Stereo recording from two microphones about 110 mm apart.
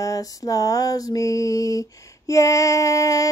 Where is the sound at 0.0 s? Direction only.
30° left (ahead or behind).